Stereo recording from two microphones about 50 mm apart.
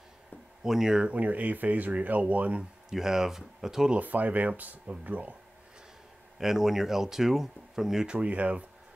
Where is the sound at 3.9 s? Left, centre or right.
Right.